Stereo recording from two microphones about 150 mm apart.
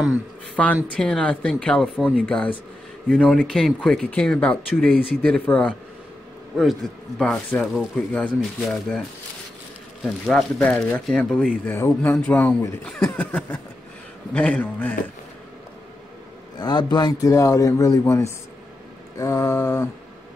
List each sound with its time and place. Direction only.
0.6 s speech: 5° left (ahead or behind)
10.2 s speech: 5° left (ahead or behind)
11.8 s speech: 15° left (ahead or behind)
16.5 s speech: 30° left (ahead or behind)